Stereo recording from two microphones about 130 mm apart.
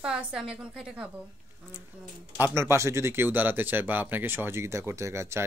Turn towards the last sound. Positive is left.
turn(degrees=-20)  # may be behind; listen again after turning